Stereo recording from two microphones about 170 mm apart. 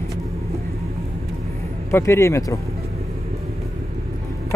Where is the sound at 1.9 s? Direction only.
15° left (ahead or behind).